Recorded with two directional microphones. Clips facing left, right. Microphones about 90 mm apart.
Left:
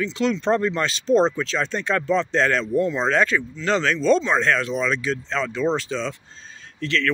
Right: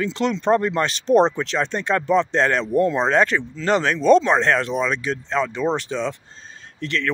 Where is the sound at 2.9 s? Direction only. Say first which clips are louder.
Right 2 dB; 20° right (ahead or behind).